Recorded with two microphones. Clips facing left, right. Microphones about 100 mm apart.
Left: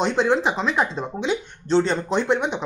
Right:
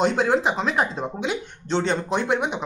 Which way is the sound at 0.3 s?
5° right (ahead or behind).